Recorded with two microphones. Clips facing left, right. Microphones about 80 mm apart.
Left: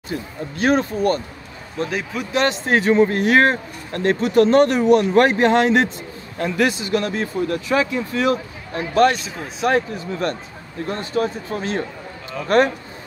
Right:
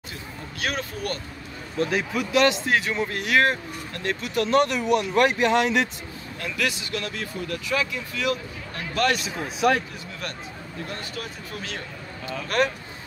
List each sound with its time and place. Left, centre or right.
0.1 s speech: left
1.9 s speech: centre
2.3 s speech: left